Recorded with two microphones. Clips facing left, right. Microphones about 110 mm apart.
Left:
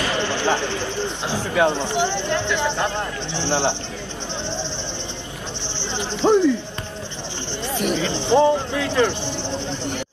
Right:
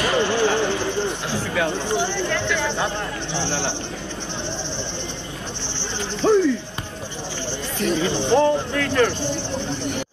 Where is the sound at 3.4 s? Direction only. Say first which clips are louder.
Left 8 dB; 20° left (ahead or behind).